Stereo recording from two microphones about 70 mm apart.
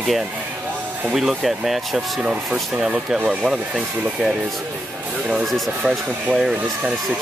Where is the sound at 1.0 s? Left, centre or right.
Centre.